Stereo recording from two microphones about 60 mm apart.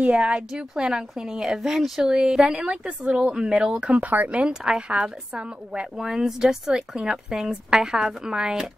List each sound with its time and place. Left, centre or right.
0.0 s a woman's voice: centre